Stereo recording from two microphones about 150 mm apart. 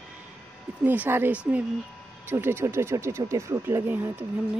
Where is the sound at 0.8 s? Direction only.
10° right (ahead or behind).